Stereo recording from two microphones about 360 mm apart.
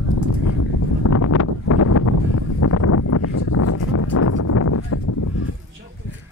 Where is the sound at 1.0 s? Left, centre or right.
Left.